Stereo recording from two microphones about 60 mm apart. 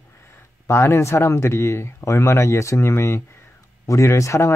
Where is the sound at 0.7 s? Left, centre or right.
Left.